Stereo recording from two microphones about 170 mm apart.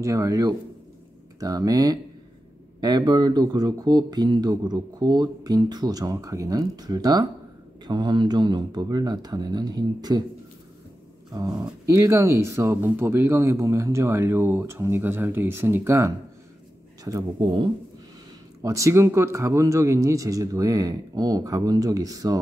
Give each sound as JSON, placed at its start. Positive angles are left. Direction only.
{"t": 0.0, "sound": "speech", "side_deg": -20}
{"t": 11.3, "sound": "speech", "side_deg": -20}
{"t": 17.0, "sound": "speech", "side_deg": -25}
{"t": 18.6, "sound": "speech", "side_deg": -20}